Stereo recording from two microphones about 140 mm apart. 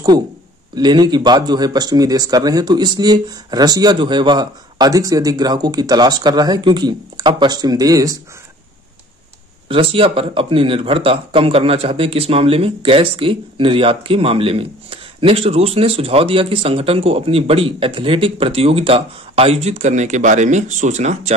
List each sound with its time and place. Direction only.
0.7 s speech: 30° right (ahead or behind)
9.7 s speech: 40° right (ahead or behind)